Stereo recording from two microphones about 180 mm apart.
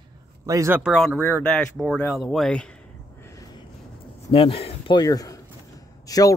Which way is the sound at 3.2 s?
20° left (ahead or behind).